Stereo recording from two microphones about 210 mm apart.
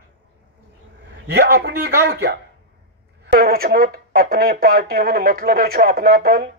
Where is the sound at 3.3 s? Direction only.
45° right (ahead or behind).